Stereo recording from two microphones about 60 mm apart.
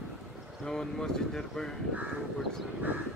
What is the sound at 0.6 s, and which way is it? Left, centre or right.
Speech, centre.